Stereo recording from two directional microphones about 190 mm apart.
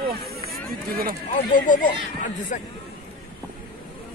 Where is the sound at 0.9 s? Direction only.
50° right (ahead or behind).